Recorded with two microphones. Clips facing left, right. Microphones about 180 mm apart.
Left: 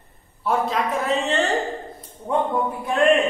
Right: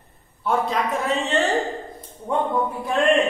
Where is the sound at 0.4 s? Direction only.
Centre (ahead or behind).